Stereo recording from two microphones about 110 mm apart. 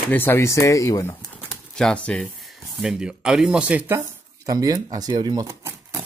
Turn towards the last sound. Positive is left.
turn(degrees=-35)  # may be behind; listen again after turning